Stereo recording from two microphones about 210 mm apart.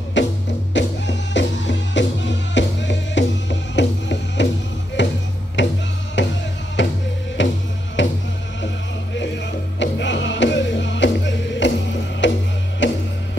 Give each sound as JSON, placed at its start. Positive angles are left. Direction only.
{"t": 0.2, "sound": "music", "side_deg": 60}